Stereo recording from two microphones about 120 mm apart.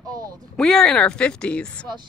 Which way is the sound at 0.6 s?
5° left (ahead or behind).